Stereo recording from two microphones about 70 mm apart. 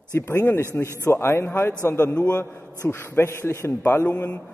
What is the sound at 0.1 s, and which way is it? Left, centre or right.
A man's voice, left.